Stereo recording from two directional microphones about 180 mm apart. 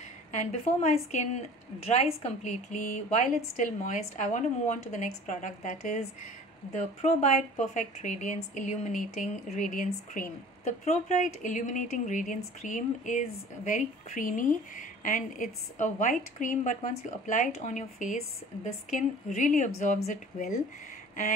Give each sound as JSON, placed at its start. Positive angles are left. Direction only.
{"t": 0.3, "sound": "speech", "side_deg": 40}